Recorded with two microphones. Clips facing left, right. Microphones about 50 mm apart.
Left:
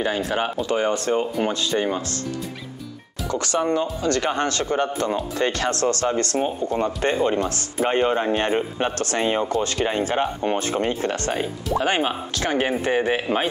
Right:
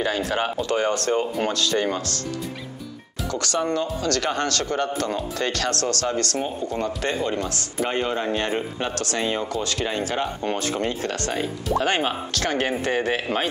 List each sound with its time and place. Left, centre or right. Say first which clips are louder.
0.0 s speech: left 1 dB; centre
3.3 s speech: left 2 dB; left
11.7 s speech: left 1 dB; centre